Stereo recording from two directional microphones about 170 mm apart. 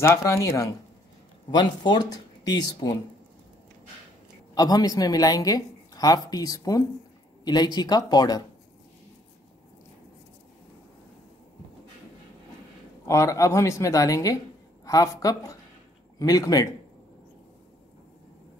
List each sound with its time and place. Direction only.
0.0 s speech: 20° left (ahead or behind)
4.6 s speech: 25° left (ahead or behind)
13.0 s speech: 15° left (ahead or behind)